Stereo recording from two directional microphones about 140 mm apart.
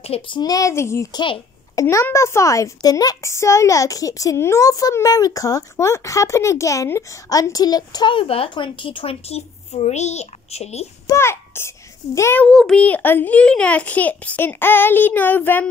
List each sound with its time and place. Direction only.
0.0 s speech: 45° left (ahead or behind)
0.4 s a woman's voice: 25° left (ahead or behind); by 10.9 s 50° left (ahead or behind)
11.1 s a child's voice: 20° left (ahead or behind)
12.4 s a child's voice: 5° left (ahead or behind)